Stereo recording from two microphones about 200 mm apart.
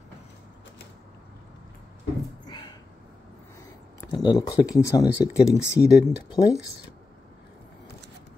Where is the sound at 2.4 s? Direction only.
20° left (ahead or behind).